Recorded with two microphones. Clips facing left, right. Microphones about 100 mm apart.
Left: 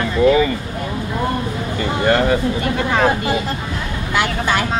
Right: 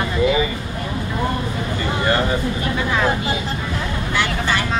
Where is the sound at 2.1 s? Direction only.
65° left (ahead or behind).